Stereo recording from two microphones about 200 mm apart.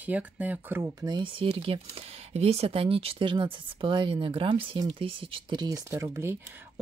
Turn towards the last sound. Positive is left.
turn(degrees=-10)  # may be behind; listen again after turning